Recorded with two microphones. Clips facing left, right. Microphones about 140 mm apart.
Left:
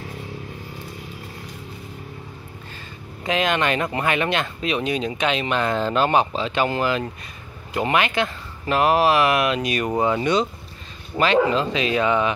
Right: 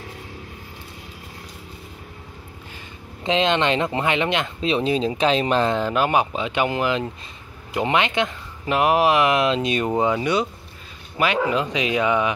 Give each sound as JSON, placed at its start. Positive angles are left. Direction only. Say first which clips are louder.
{"t": 3.3, "sound": "speech", "louder": "right 2 dB", "side_deg": -25}
{"t": 5.7, "sound": "speech", "louder": "left 1 dB", "side_deg": -15}
{"t": 10.1, "sound": "speech", "louder": "left 1 dB", "side_deg": -10}